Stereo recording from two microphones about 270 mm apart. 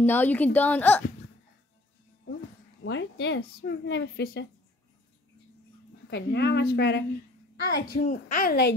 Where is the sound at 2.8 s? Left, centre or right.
Left.